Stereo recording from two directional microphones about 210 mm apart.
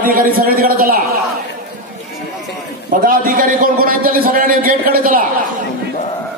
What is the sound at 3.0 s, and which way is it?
A man's voice, 40° right (ahead or behind).